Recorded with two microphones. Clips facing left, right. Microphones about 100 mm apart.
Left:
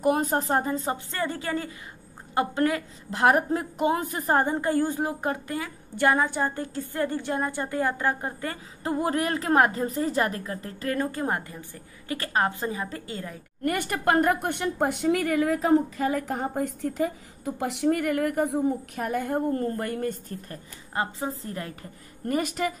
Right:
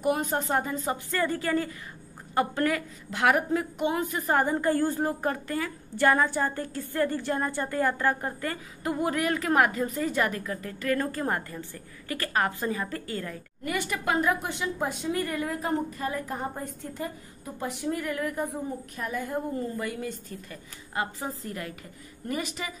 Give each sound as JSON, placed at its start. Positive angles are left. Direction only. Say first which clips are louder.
{"t": 0.0, "sound": "a woman's voice", "louder": "left 3 dB", "side_deg": 40}
{"t": 3.1, "sound": "a woman's voice", "louder": "left 3 dB", "side_deg": 35}
{"t": 13.7, "sound": "a woman's voice", "louder": "left 4 dB", "side_deg": 50}
{"t": 17.6, "sound": "a woman's voice", "louder": "left 6 dB", "side_deg": 70}
{"t": 20.9, "sound": "a woman's voice", "louder": "left 3 dB", "side_deg": 30}
{"t": 22.3, "sound": "speech", "louder": "left 6 dB", "side_deg": 50}